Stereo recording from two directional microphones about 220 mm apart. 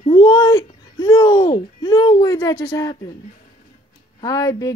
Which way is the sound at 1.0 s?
20° left (ahead or behind).